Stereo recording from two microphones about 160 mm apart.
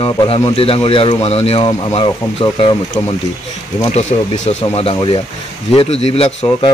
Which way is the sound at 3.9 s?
45° left (ahead or behind).